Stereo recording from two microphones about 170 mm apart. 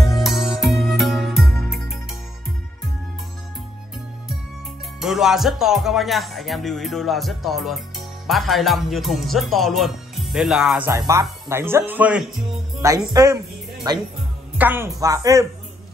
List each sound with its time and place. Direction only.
0.0 s music: centre (ahead or behind)
5.0 s speech: centre (ahead or behind)
10.9 s speech: 20° right (ahead or behind)
12.8 s speech: 20° right (ahead or behind)
14.6 s speech: 15° right (ahead or behind)